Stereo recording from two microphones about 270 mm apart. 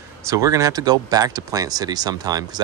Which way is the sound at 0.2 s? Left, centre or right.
Centre.